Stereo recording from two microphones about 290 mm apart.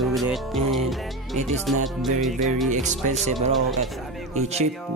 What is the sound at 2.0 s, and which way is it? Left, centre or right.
Music, centre.